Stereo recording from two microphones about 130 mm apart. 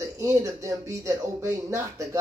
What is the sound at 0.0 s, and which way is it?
Speech, 25° right (ahead or behind).